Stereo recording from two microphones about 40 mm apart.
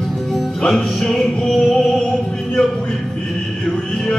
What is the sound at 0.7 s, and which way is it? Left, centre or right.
Music, centre.